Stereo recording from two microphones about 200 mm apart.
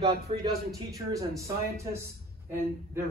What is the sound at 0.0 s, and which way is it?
Speech, 25° right (ahead or behind).